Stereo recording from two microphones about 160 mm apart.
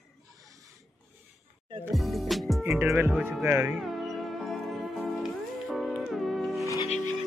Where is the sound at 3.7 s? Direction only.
Centre (ahead or behind).